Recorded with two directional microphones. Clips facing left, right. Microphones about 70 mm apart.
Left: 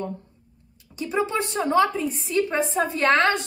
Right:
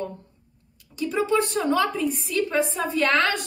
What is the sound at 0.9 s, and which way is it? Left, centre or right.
A woman's voice, left.